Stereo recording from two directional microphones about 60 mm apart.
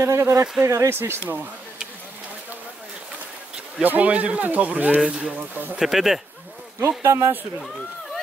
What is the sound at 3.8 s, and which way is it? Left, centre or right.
Speech, right.